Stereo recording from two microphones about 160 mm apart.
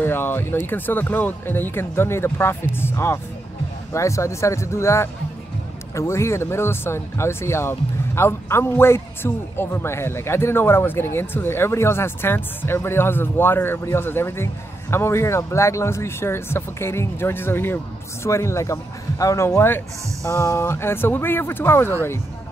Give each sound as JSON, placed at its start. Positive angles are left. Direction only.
{"t": 0.0, "sound": "speech", "side_deg": 15}